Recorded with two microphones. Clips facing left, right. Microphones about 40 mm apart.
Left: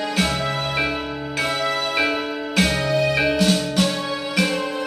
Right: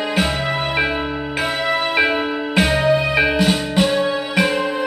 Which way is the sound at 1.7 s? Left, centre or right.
Right.